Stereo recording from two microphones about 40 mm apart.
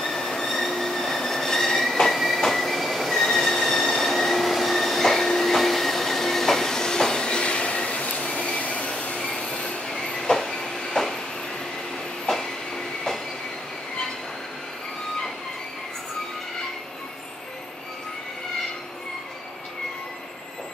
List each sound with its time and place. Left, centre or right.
0.0 s train: centre; by 9.3 s left
9.8 s train: centre
12.3 s train: centre